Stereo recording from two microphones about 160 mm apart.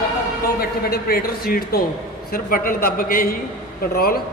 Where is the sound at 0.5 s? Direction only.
70° left (ahead or behind).